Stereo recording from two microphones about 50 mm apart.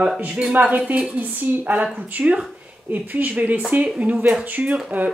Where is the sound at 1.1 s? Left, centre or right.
Right.